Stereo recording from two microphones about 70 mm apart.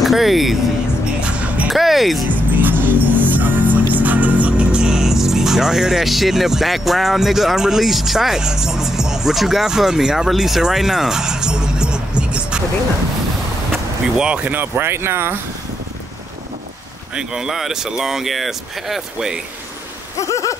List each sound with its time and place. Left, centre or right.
0.0 s speech: centre
1.2 s music: centre
1.7 s speech: centre
2.3 s music: right
14.0 s speech: centre; by 15.3 s right
17.1 s speech: centre
20.2 s rain: left